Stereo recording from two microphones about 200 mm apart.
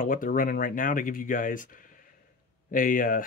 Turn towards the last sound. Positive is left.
turn(degrees=45)  # may be behind; listen again after turning